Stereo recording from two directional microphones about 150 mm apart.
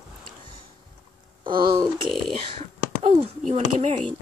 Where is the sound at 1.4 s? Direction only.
30° right (ahead or behind).